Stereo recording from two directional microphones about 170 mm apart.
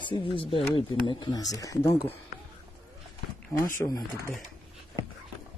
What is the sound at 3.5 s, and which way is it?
Speech, 15° left (ahead or behind).